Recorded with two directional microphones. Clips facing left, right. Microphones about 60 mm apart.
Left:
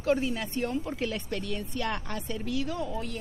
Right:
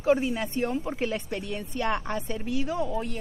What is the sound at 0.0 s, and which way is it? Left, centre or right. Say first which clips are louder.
Speech: right 3 dB; centre.